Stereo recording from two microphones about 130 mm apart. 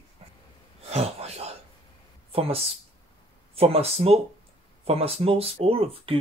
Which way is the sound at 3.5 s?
50° right (ahead or behind).